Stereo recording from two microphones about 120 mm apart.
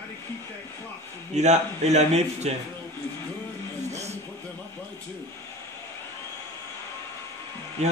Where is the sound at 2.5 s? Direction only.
60° right (ahead or behind).